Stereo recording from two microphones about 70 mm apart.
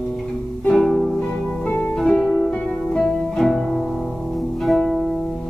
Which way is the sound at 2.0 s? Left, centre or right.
Centre.